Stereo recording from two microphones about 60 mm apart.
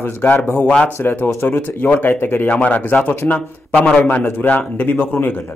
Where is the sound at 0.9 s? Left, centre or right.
Left.